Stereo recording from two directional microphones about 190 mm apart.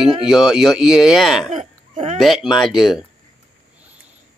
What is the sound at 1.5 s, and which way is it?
Hiccup, 35° right (ahead or behind).